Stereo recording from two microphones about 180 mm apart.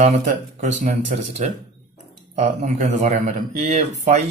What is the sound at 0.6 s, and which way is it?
Speech, 45° right (ahead or behind).